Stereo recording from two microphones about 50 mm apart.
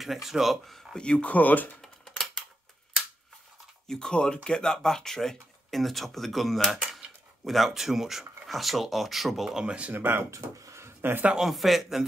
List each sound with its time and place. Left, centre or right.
0.0 s speech: centre
0.9 s speech: left
1.8 s typing: centre
3.8 s speech: centre
9.7 s speech: right
9.9 s speech: right
10.3 s a sound: right
11.0 s speech: right
11.5 s speech: centre